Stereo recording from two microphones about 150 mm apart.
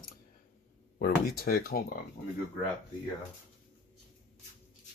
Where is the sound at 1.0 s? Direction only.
80° left.